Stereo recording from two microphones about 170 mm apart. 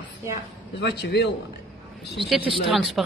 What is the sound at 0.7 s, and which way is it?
Speech, 75° left (ahead or behind).